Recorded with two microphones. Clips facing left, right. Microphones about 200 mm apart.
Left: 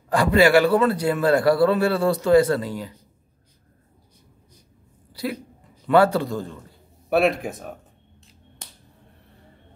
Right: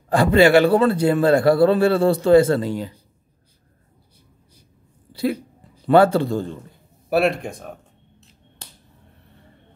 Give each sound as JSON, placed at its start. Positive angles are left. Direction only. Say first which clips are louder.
{"t": 0.1, "sound": "a man's voice", "louder": "right 3 dB", "side_deg": -25}
{"t": 5.1, "sound": "a man's voice", "louder": "right 6 dB", "side_deg": -25}
{"t": 7.1, "sound": "speech", "louder": "right 1 dB", "side_deg": 0}